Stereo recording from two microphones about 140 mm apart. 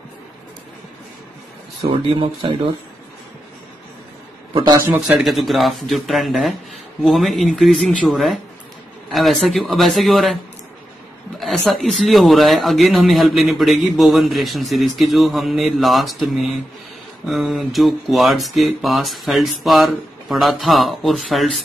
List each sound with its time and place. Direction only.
2.1 s speech: 35° right (ahead or behind)
4.6 s a man's voice: 30° right (ahead or behind)
5.0 s speech: 5° right (ahead or behind)
11.3 s speech: centre (ahead or behind)